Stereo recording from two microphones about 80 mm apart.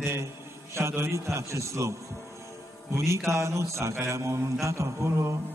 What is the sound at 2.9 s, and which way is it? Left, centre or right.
A man's voice, right.